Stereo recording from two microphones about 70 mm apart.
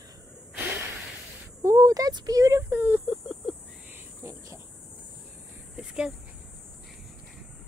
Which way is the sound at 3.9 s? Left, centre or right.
Right.